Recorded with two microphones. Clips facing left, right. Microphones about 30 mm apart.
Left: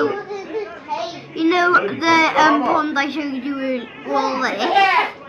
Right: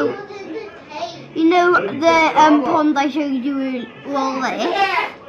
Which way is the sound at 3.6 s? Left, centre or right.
Centre.